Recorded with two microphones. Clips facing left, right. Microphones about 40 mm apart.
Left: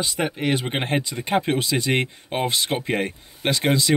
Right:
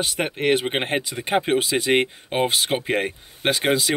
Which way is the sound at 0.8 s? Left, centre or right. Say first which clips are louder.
Even; centre.